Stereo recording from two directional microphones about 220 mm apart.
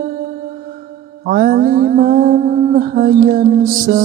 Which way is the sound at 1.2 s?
45° right (ahead or behind).